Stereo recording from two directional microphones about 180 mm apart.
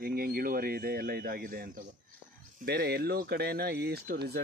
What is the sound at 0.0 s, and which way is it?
Speech, 55° right (ahead or behind).